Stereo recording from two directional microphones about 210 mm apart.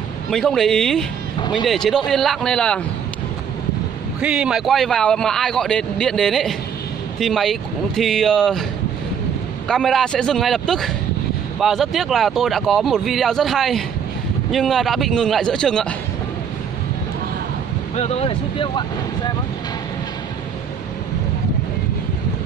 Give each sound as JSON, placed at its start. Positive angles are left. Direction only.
{"t": 0.3, "sound": "a man's voice", "side_deg": 0}
{"t": 1.4, "sound": "speech", "side_deg": 20}
{"t": 1.7, "sound": "a man's voice", "side_deg": 0}
{"t": 4.2, "sound": "a man's voice", "side_deg": -5}
{"t": 9.7, "sound": "a man's voice", "side_deg": 0}
{"t": 17.9, "sound": "speech", "side_deg": 30}